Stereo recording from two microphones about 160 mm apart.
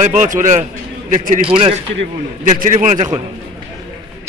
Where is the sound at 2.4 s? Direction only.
50° right (ahead or behind).